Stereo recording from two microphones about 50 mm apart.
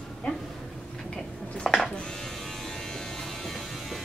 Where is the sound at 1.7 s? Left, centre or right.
Centre.